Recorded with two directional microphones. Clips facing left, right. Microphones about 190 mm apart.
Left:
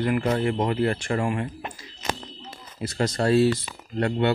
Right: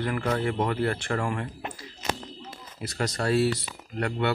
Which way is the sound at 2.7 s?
25° left (ahead or behind).